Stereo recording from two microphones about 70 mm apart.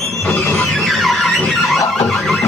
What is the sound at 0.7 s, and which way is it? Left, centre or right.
Music, centre.